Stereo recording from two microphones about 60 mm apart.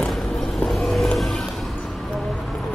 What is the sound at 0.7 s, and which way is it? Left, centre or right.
Vehicle, centre.